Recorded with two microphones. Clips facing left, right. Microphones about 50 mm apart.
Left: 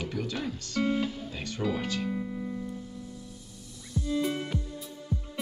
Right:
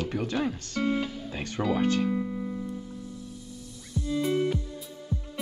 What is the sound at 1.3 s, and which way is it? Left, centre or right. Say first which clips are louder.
Speech: right 3 dB; right.